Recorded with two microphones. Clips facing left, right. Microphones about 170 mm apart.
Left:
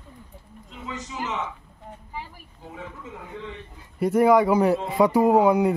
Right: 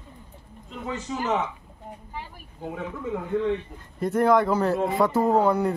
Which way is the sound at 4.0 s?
10° left (ahead or behind).